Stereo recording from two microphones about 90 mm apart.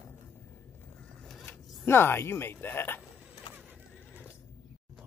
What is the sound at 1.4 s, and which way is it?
Speech, 25° left (ahead or behind).